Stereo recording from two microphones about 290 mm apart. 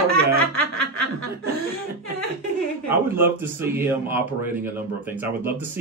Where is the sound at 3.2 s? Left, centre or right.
Centre.